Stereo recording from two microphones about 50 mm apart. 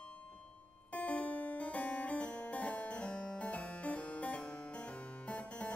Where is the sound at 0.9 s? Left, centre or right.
Left.